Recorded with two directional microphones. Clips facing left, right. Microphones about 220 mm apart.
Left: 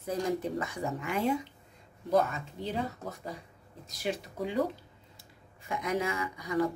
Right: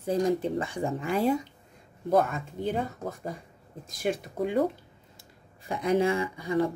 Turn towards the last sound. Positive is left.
turn(degrees=-30)  # may be behind; listen again after turning